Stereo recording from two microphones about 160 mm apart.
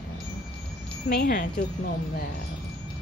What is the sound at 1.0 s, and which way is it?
Speech, 65° left (ahead or behind).